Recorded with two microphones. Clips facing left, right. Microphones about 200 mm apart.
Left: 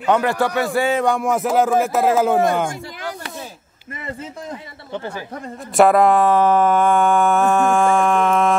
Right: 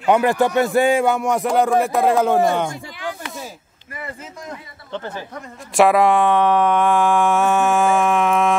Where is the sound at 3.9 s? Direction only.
25° left (ahead or behind).